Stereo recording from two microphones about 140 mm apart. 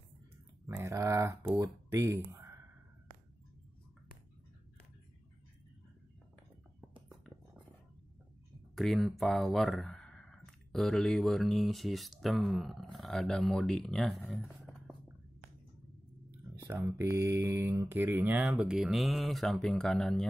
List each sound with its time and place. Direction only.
0.7 s speech: 15° right (ahead or behind)
8.7 s speech: centre (ahead or behind)
16.6 s speech: 20° right (ahead or behind); by 20.2 s 5° left (ahead or behind)